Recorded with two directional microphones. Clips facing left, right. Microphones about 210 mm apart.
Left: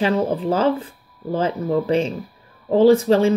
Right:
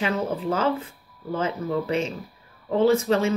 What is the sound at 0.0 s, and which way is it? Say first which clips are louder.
Speech: left 6 dB; 30° left (ahead or behind).